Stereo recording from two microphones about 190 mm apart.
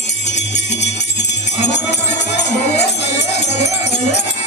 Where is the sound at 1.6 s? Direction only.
65° left (ahead or behind).